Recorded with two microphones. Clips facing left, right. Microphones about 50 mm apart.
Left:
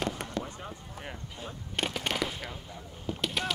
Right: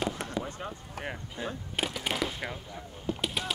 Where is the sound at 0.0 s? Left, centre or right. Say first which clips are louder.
Right 1 dB; centre.